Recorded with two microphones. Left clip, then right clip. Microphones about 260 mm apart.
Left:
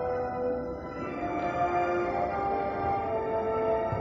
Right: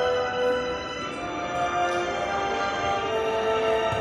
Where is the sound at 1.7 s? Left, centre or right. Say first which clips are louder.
Right 5 dB; right.